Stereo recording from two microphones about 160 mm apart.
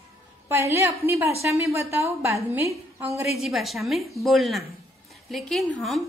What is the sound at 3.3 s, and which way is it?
A woman's voice, centre (ahead or behind).